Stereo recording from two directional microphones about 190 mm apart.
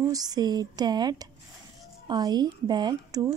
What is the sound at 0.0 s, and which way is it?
A woman's voice, 20° right (ahead or behind).